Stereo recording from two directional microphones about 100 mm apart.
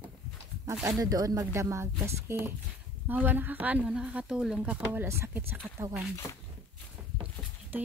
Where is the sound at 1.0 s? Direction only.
40° right (ahead or behind); by 5.8 s 25° right (ahead or behind).